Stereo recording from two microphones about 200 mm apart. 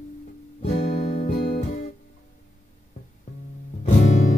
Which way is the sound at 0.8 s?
50° left (ahead or behind).